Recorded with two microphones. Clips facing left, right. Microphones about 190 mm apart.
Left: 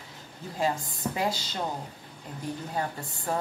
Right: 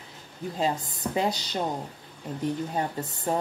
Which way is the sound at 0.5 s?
20° right (ahead or behind).